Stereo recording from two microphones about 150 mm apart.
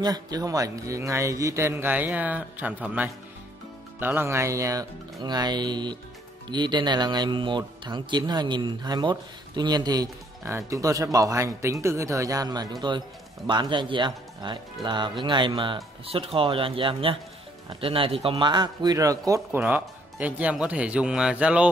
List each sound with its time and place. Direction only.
0.0 s speech: 25° right (ahead or behind)
19.6 s speech: 10° right (ahead or behind)